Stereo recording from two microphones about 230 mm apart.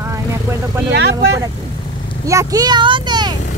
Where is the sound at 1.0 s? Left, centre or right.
Right.